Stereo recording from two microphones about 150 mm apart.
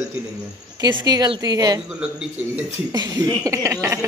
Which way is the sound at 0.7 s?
25° right (ahead or behind).